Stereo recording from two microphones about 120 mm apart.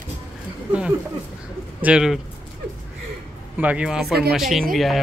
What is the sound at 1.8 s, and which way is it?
Speech, 5° right (ahead or behind).